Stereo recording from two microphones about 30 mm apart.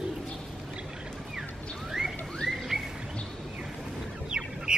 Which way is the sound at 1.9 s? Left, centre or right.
Centre.